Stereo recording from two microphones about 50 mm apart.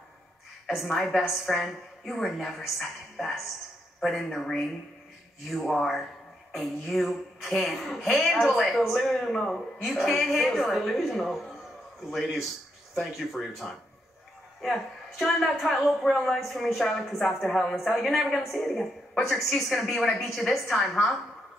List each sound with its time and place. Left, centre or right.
0.7 s a woman's voice: centre
14.6 s a man's voice: centre